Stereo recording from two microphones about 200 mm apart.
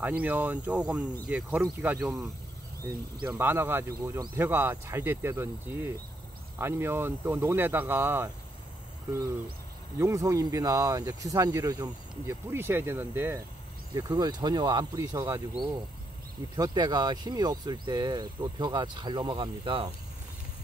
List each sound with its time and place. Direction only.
0.0 s speech: 10° right (ahead or behind)
2.9 s speech: 20° right (ahead or behind)
9.9 s speech: 15° right (ahead or behind)
16.5 s speech: 20° right (ahead or behind)